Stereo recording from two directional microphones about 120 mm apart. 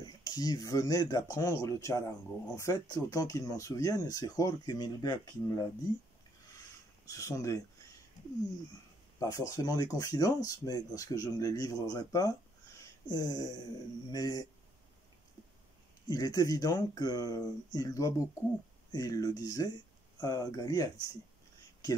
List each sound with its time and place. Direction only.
0.0 s speech: 35° left (ahead or behind)
7.1 s speech: 25° left (ahead or behind)
9.2 s speech: 25° left (ahead or behind)
16.1 s speech: 30° left (ahead or behind)